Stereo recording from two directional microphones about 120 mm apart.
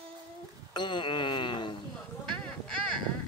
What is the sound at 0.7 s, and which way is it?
Wail, 40° left (ahead or behind).